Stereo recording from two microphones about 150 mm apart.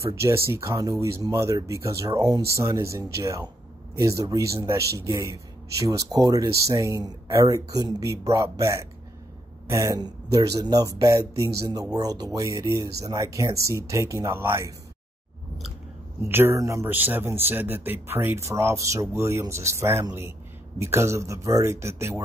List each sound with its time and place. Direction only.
0.0 s speech: 20° right (ahead or behind)
16.3 s speech: 15° right (ahead or behind)